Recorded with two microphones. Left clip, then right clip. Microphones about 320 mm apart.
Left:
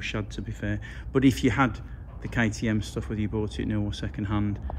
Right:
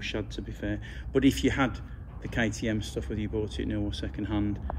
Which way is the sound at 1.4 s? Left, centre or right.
Left.